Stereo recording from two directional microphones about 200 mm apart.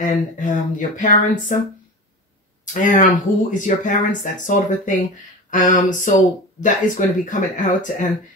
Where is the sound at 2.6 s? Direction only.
40° left (ahead or behind).